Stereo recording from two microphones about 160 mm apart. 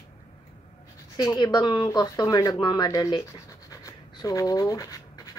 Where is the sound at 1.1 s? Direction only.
25° left (ahead or behind).